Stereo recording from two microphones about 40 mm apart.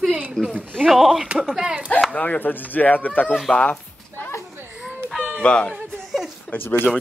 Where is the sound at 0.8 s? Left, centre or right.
Centre.